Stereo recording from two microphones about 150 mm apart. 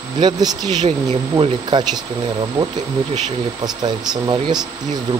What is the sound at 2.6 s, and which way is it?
Speech, 10° right (ahead or behind).